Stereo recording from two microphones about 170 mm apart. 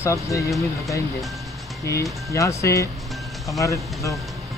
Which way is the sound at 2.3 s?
20° left (ahead or behind).